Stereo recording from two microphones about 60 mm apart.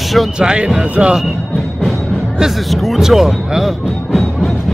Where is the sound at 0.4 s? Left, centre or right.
Centre.